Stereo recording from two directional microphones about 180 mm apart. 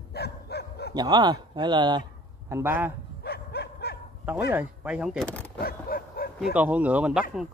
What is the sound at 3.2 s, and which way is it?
Livestock, 60° left (ahead or behind).